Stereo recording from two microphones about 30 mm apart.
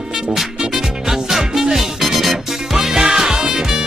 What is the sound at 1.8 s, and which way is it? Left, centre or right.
Music, centre.